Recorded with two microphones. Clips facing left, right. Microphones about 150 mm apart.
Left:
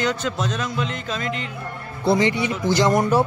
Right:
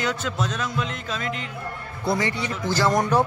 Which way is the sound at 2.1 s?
25° left (ahead or behind).